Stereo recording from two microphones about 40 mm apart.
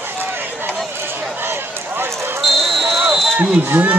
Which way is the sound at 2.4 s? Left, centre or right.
Centre.